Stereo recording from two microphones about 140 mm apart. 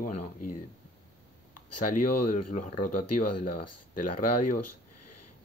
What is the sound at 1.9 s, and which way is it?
Speech, 65° left (ahead or behind).